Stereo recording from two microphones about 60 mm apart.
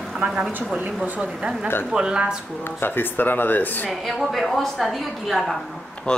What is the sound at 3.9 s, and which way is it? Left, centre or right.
A woman's voice, centre.